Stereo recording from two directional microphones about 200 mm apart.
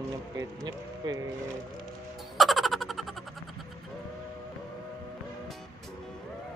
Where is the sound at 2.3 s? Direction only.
Centre (ahead or behind).